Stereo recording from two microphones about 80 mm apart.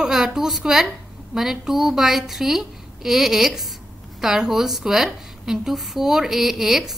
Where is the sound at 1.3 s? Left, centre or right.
Centre.